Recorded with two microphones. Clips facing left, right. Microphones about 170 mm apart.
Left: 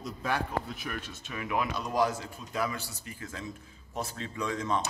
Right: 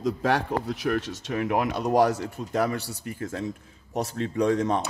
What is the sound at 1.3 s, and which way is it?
A man's voice, 60° right (ahead or behind).